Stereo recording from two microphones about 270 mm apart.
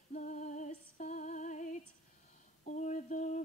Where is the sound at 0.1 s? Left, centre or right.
Left.